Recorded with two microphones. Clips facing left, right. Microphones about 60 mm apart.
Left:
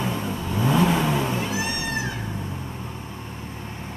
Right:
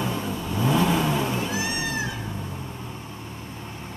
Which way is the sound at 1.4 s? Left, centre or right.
Left.